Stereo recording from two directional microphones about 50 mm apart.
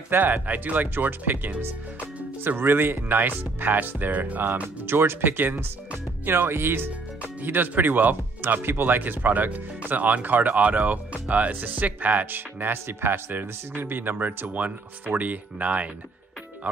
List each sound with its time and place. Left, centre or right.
0.1 s speech: right
4.8 s speech: right
12.4 s speech: right